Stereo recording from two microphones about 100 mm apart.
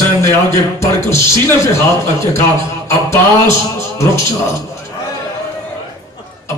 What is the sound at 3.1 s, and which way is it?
A man's voice, 25° left (ahead or behind).